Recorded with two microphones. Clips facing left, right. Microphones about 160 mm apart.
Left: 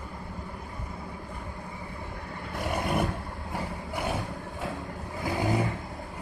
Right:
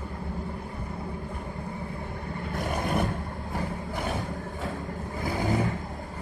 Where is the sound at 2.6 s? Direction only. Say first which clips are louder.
Even; 5° left (ahead or behind).